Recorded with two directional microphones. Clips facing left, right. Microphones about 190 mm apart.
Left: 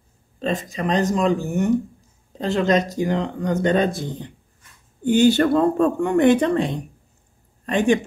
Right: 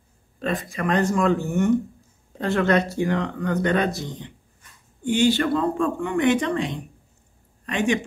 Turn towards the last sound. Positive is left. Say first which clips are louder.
# left 4 dB
turn(degrees=35)  # may be behind; listen again after turning